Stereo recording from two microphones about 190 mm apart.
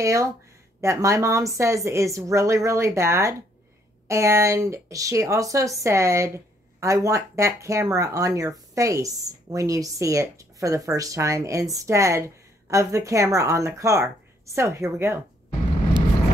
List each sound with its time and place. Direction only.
0.0 s speech: 15° right (ahead or behind)